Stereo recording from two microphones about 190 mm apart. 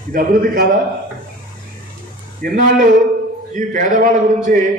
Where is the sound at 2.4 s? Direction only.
45° right (ahead or behind).